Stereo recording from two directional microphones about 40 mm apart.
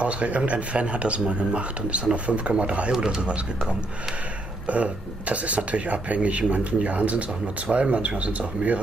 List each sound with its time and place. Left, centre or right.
0.0 s speech: right
2.9 s speech: centre
4.6 s speech: right